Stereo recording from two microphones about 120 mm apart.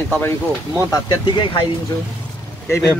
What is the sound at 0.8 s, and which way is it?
Speech, 35° left (ahead or behind).